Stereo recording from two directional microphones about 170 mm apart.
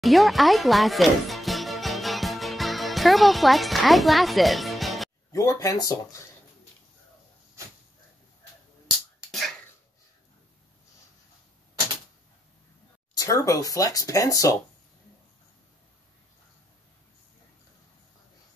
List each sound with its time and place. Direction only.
0.0 s music: centre (ahead or behind)
5.3 s speech: 20° left (ahead or behind)
9.3 s sneeze: centre (ahead or behind)
13.1 s speech: 20° left (ahead or behind)